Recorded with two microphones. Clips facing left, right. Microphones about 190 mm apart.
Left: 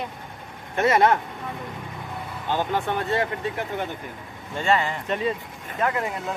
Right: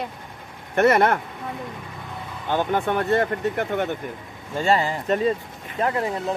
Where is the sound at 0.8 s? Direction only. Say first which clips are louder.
Right 2 dB; 55° right (ahead or behind).